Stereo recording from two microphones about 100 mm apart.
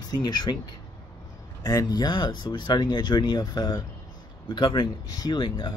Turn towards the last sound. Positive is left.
turn(degrees=55)  # may be behind; listen again after turning